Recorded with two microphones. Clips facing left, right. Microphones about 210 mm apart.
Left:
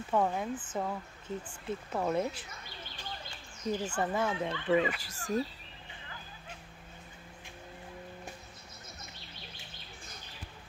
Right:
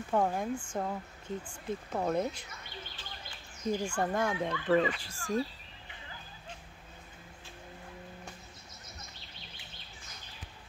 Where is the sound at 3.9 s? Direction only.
5° left (ahead or behind).